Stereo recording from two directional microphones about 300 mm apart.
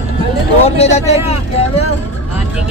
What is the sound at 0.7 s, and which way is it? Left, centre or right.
Speech, centre.